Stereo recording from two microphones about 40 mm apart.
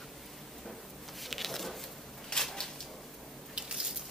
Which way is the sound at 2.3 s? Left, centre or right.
Left.